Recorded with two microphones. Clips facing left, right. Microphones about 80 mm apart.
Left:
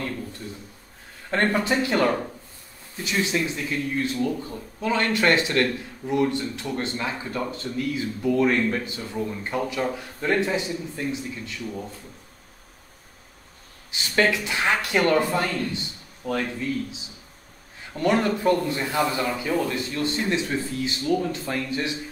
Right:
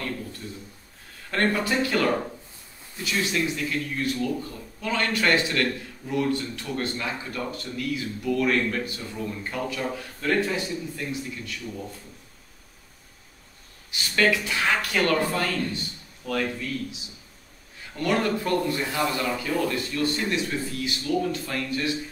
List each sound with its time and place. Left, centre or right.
1.3 s speech: left
13.9 s speech: left